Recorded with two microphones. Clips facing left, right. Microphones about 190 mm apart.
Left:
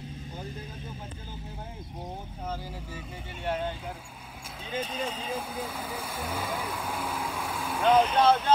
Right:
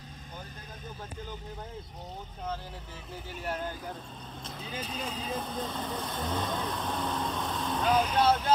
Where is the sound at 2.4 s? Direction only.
10° left (ahead or behind).